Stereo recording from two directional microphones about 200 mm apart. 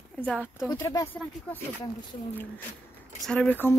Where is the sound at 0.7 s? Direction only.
15° left (ahead or behind).